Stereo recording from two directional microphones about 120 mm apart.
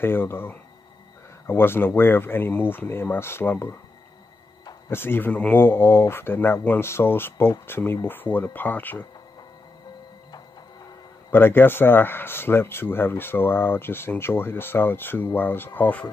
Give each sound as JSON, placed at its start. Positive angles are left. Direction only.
{"t": 0.0, "sound": "speech", "side_deg": 20}
{"t": 4.8, "sound": "speech", "side_deg": 20}
{"t": 11.2, "sound": "speech", "side_deg": 20}